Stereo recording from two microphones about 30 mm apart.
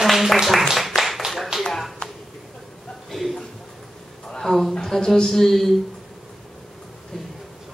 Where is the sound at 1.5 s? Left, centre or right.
Right.